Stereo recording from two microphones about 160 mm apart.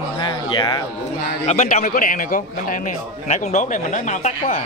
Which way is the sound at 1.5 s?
45° left (ahead or behind).